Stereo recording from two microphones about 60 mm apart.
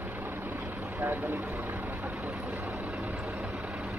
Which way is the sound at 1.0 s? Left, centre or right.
Right.